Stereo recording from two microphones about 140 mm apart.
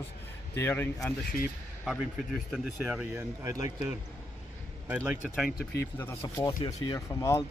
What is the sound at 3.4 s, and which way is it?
Speech, 20° right (ahead or behind).